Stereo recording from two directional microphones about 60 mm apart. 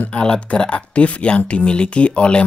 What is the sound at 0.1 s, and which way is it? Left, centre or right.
Speech, centre.